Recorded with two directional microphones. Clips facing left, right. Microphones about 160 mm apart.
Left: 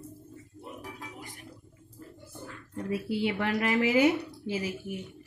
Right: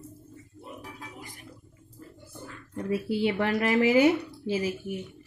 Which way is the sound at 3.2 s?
30° right (ahead or behind).